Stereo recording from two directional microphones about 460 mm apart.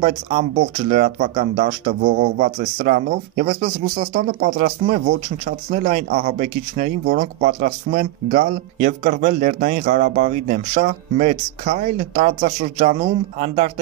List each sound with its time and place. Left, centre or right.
0.0 s speech: centre